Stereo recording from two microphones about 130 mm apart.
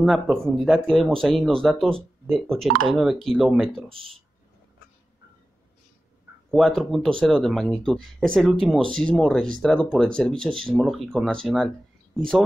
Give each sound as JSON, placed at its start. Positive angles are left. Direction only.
{"t": 0.0, "sound": "speech", "side_deg": 0}
{"t": 3.9, "sound": "speech", "side_deg": -45}
{"t": 6.5, "sound": "speech", "side_deg": 5}